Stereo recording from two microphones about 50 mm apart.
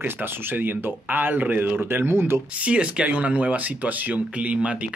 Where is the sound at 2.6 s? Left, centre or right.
Right.